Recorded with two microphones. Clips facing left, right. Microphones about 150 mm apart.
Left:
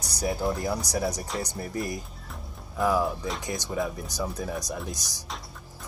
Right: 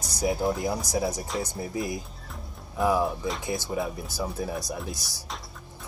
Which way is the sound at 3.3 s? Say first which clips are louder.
Right 2 dB; 5° right (ahead or behind).